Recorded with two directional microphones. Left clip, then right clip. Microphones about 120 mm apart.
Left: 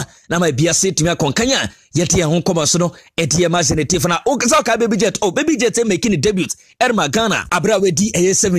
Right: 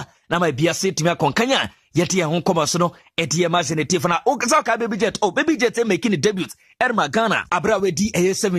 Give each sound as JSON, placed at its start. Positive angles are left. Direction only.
{"t": 0.0, "sound": "speech", "side_deg": 35}
{"t": 6.8, "sound": "speech", "side_deg": 40}